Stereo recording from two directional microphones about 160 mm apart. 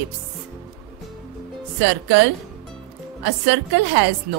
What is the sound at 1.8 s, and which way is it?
Speech, 90° right.